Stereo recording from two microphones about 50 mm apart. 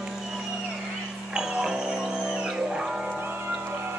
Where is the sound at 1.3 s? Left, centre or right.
Centre.